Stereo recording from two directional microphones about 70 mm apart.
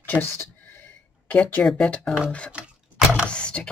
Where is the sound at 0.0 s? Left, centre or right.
Left.